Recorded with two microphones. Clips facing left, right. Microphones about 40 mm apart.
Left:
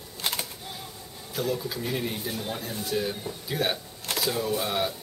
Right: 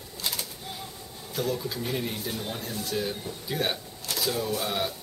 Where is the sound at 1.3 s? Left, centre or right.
Centre.